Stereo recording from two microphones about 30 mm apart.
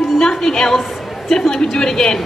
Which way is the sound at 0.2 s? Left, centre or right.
Centre.